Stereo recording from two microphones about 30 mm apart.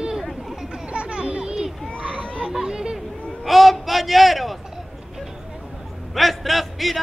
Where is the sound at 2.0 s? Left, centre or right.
Right.